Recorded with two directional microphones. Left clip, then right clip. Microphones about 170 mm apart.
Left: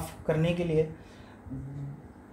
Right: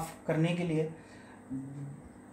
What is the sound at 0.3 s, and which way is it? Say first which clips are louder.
Speech: left 3 dB; 40° left (ahead or behind).